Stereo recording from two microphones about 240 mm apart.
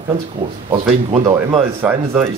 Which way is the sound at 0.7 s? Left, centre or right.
Right.